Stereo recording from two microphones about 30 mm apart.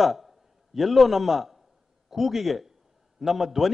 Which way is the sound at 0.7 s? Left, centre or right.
Centre.